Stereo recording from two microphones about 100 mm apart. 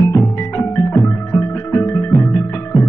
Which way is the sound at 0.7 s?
25° left (ahead or behind).